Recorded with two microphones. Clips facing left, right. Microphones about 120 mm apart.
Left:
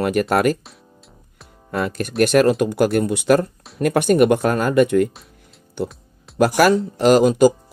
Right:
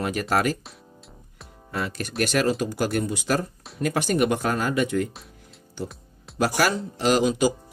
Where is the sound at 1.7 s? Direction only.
50° left (ahead or behind).